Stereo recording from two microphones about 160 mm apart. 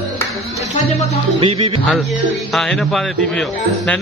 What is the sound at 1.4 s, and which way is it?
Speech, 35° right (ahead or behind).